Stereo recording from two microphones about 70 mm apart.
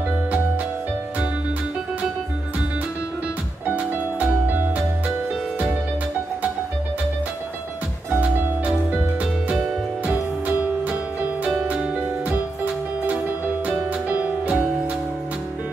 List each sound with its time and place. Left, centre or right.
3.6 s music: right
8.1 s music: right
13.7 s music: right